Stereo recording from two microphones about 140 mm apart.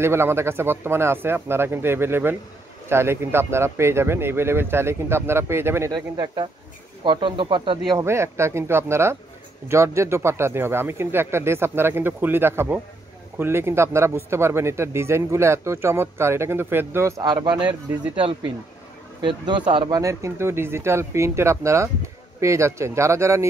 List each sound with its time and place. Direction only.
0.0 s speech: 20° right (ahead or behind); by 7.8 s 35° right (ahead or behind)
7.9 s a man's voice: 20° right (ahead or behind)
17.2 s speech: 30° right (ahead or behind)
19.2 s speech: 35° right (ahead or behind)
20.0 s a man's voice: 20° right (ahead or behind)